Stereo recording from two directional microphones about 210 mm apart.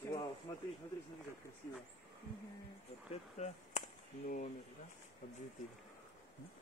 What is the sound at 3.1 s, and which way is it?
Chop, 35° left (ahead or behind).